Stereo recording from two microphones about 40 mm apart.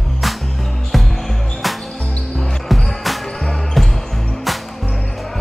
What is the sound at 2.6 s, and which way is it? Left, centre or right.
Basketball bounce, centre.